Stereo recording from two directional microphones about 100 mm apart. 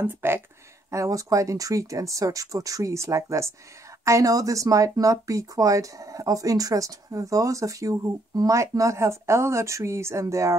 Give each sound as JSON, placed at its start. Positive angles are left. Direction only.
{"t": 0.0, "sound": "speech", "side_deg": -20}
{"t": 0.8, "sound": "speech", "side_deg": -30}